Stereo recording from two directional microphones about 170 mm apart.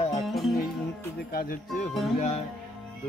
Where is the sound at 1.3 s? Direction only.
60° left (ahead or behind).